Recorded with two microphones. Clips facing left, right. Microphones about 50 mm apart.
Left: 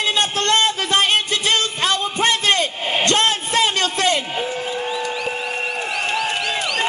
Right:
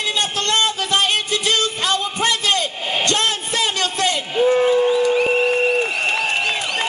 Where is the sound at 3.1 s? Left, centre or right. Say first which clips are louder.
Left 3 dB; left.